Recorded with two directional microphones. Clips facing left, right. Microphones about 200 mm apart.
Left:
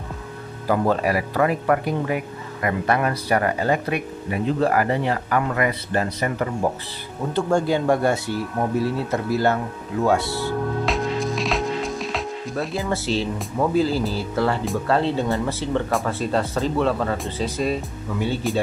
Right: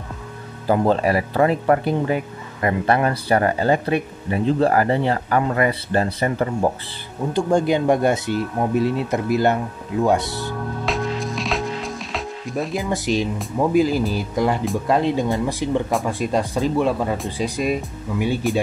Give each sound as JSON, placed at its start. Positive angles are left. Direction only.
{"t": 0.7, "sound": "speech", "side_deg": -25}
{"t": 7.3, "sound": "speech", "side_deg": -15}
{"t": 10.9, "sound": "music", "side_deg": 0}
{"t": 12.5, "sound": "speech", "side_deg": -15}